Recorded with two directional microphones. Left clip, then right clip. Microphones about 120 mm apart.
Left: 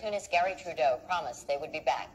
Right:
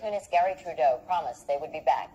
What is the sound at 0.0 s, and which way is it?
A man's voice, 25° left (ahead or behind).